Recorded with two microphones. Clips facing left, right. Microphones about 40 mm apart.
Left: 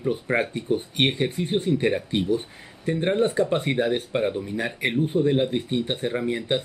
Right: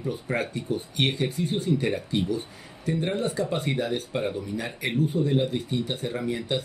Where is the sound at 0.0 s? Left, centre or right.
Left.